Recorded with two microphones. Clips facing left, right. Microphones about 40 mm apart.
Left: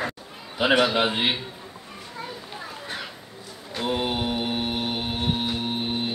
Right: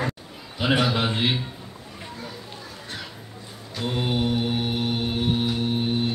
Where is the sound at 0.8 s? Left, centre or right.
Centre.